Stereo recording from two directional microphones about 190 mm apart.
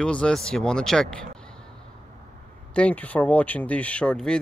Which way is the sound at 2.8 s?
5° left (ahead or behind).